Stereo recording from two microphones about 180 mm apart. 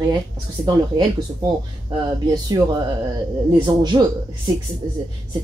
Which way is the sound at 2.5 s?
20° right (ahead or behind).